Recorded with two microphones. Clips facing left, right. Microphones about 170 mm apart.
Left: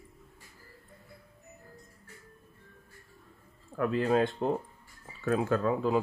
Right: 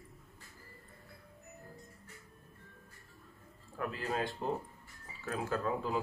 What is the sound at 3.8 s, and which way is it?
Speech, 90° left.